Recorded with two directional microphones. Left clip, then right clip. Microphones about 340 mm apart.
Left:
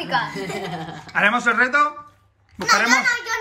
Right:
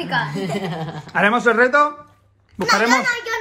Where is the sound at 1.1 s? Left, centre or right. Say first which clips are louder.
Right 2 dB; centre.